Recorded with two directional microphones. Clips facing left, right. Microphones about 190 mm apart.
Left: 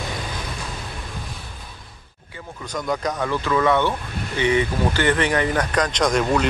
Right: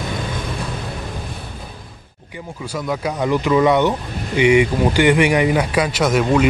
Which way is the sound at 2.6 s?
5° right (ahead or behind).